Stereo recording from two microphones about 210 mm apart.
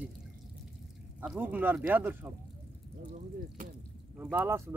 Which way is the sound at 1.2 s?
5° right (ahead or behind).